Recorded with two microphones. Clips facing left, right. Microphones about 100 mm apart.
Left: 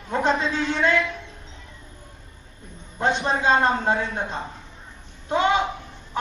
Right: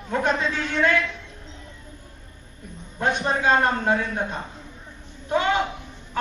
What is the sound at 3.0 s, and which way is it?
A man's voice, 25° left (ahead or behind).